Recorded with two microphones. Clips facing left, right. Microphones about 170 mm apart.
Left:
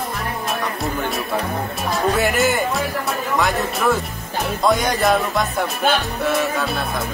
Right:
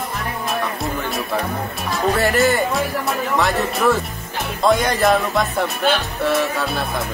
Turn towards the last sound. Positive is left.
turn(degrees=0)  # may be behind; listen again after turning